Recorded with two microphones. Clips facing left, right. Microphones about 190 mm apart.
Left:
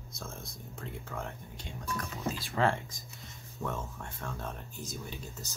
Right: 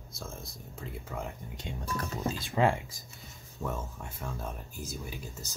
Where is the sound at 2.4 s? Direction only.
15° right (ahead or behind).